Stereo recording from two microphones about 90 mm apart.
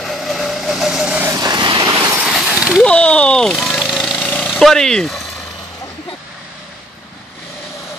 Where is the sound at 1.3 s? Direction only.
40° right (ahead or behind).